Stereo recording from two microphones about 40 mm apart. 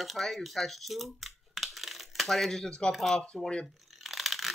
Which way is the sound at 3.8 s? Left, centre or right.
Centre.